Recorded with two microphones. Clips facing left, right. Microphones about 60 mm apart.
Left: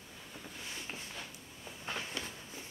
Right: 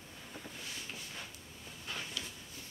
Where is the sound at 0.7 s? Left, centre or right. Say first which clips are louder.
Left 1 dB; left.